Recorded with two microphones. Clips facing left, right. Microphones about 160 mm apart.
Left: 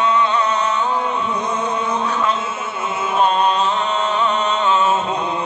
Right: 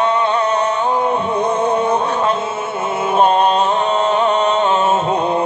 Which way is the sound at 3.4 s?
55° right (ahead or behind).